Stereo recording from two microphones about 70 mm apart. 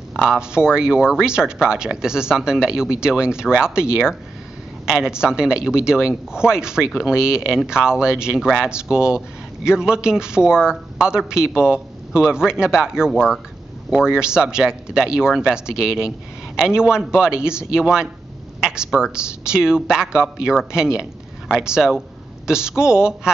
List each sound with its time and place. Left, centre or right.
0.1 s speech: centre